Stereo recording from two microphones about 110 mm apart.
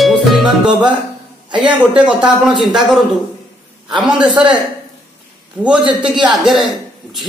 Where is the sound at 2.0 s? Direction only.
10° right (ahead or behind).